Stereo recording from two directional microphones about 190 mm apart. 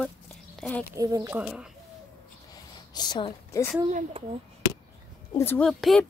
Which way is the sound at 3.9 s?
30° right (ahead or behind).